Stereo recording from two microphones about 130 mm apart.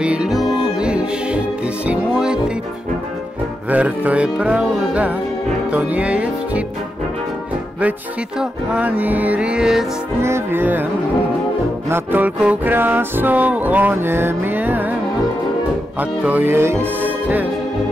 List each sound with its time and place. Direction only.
0.0 s music: 10° right (ahead or behind)
3.7 s music: 10° right (ahead or behind)
8.4 s music: 10° right (ahead or behind)
10.2 s music: 20° right (ahead or behind)
11.9 s music: 15° right (ahead or behind)
16.0 s music: 15° right (ahead or behind)
16.7 s music: 15° left (ahead or behind)